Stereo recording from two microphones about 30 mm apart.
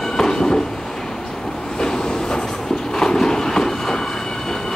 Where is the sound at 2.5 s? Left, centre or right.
Centre.